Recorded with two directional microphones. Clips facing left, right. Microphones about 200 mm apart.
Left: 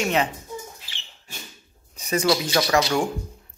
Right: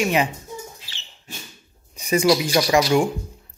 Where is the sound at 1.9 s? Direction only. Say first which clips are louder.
Right 4 dB; 10° right (ahead or behind).